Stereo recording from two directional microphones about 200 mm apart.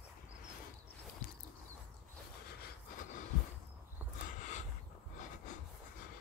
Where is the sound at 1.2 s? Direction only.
45° left (ahead or behind).